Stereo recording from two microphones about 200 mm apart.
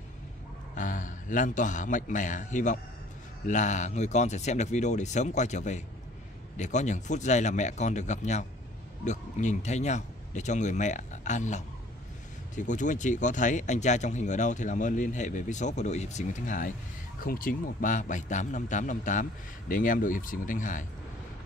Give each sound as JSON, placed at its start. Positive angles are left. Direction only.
{"t": 0.7, "sound": "speech", "side_deg": 40}